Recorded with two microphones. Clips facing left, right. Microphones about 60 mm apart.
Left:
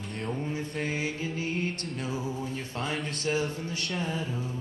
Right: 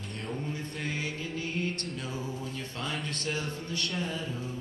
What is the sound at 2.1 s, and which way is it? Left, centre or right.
Music, centre.